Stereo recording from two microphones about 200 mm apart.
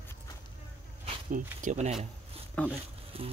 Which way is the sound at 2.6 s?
5° left (ahead or behind).